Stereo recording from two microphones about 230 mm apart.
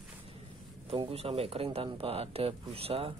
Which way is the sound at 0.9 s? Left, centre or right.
Right.